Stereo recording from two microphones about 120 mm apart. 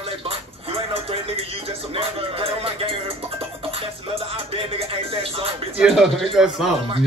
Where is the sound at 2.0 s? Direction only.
50° right (ahead or behind).